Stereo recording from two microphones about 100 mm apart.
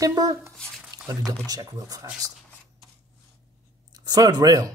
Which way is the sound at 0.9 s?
40° right (ahead or behind).